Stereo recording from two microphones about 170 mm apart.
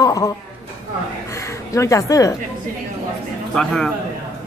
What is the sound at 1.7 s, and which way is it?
Speech, 20° left (ahead or behind).